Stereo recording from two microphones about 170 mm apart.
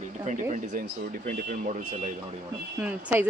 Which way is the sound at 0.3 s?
45° right (ahead or behind).